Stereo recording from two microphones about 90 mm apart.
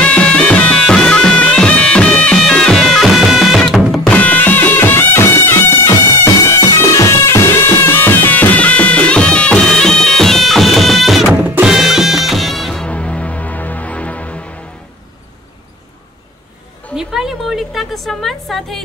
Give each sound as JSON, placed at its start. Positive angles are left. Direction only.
{"t": 0.0, "sound": "music", "side_deg": 15}
{"t": 4.1, "sound": "music", "side_deg": 15}
{"t": 12.8, "sound": "music", "side_deg": 15}
{"t": 16.9, "sound": "a sound", "side_deg": -5}